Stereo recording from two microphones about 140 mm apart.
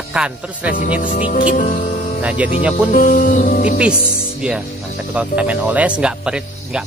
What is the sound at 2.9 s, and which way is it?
Speech, 75° left (ahead or behind).